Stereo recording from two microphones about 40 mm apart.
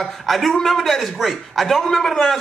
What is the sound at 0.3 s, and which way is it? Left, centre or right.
A man's voice, centre.